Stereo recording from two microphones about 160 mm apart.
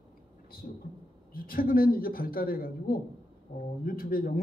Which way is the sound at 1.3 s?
65° left (ahead or behind).